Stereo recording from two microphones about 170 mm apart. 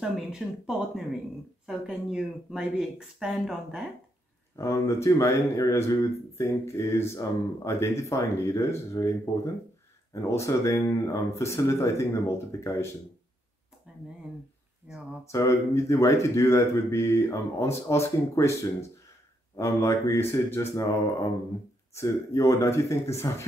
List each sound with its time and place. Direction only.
0.0 s speech: 5° right (ahead or behind)
4.6 s speech: 15° left (ahead or behind)
13.9 s a sound: 5° right (ahead or behind)
14.9 s speech: 5° right (ahead or behind)
15.3 s speech: 15° left (ahead or behind)